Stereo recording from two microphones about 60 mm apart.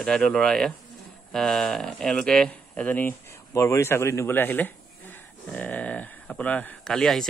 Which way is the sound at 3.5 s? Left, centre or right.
Left.